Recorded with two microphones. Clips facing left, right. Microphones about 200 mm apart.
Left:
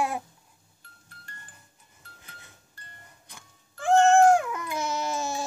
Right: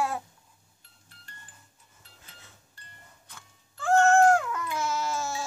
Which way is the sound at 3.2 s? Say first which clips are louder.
Left 1 dB; 15° left (ahead or behind).